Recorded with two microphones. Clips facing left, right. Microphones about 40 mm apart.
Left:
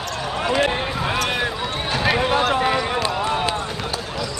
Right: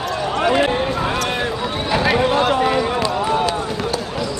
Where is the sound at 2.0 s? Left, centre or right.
Centre.